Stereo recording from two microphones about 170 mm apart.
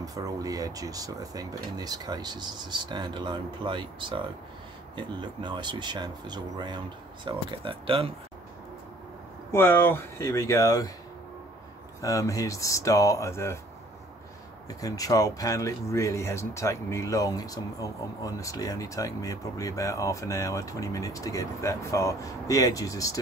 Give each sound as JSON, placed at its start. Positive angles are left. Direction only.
{"t": 0.0, "sound": "speech", "side_deg": -20}
{"t": 9.5, "sound": "speech", "side_deg": 15}
{"t": 12.0, "sound": "speech", "side_deg": 20}
{"t": 14.8, "sound": "speech", "side_deg": 20}